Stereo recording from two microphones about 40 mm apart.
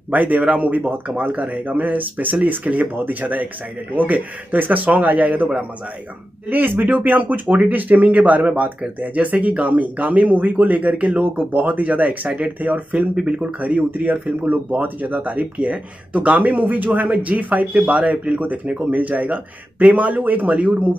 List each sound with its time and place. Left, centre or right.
0.1 s a man's voice: right
6.5 s a man's voice: right
12.9 s speech: right
13.6 s a man's voice: right